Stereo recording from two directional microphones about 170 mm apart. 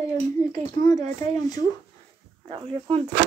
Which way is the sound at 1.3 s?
20° left (ahead or behind).